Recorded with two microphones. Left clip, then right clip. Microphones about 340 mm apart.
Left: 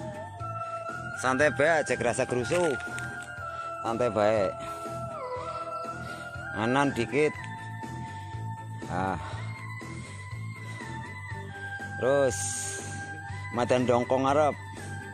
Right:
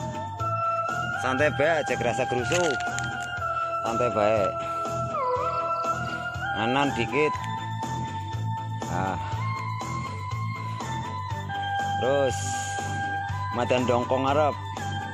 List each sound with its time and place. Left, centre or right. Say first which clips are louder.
1.2 s speech: even; centre
2.5 s speech: right 2 dB; centre
3.8 s speech: even; centre
6.5 s speech: right 1 dB; centre
8.9 s speech: right 1 dB; centre
12.0 s speech: left 2 dB; centre